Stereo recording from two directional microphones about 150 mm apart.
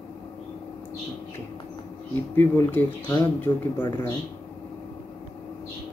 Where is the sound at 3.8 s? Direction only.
30° left (ahead or behind).